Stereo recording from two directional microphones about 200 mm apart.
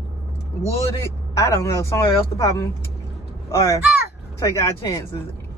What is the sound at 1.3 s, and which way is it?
A man's voice, 15° left (ahead or behind).